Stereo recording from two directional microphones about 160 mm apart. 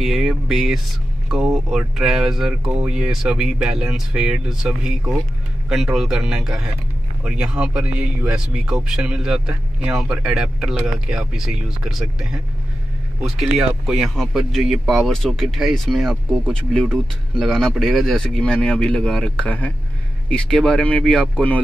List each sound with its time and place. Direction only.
0.0 s speech: centre (ahead or behind)